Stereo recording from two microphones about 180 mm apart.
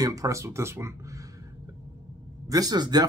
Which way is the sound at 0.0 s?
20° right (ahead or behind).